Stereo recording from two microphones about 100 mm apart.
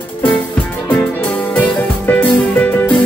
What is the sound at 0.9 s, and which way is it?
Music, 15° left (ahead or behind).